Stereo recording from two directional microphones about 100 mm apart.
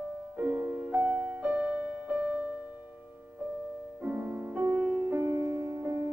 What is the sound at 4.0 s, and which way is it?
Music, 20° right (ahead or behind).